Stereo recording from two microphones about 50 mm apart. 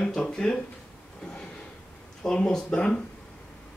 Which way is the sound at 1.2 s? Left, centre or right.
Centre.